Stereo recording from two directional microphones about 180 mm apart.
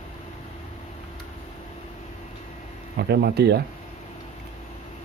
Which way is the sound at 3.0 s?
60° right (ahead or behind).